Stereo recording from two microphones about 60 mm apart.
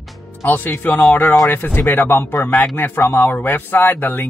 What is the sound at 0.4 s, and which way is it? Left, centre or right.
Speech, left.